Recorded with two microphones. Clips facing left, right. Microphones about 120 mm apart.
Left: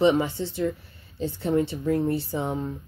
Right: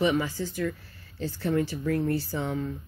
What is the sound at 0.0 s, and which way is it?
Speech, 25° left (ahead or behind).